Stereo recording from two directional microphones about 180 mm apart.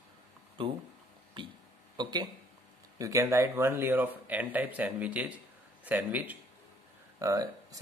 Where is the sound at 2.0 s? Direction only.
20° right (ahead or behind).